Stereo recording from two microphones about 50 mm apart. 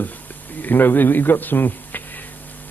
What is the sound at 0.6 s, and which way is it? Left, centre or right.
A man's voice, left.